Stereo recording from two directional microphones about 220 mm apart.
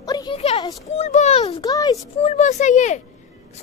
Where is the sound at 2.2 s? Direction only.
30° left (ahead or behind).